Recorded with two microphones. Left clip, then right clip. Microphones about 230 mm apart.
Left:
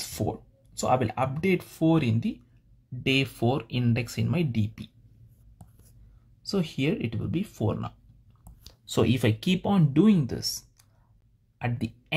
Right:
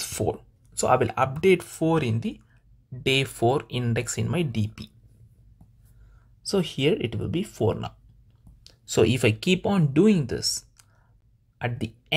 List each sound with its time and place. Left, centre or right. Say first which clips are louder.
0.1 s speech: right 6 dB; right
6.5 s speech: right 5 dB; right